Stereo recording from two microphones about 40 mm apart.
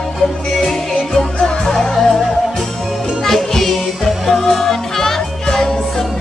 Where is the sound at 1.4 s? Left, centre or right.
Centre.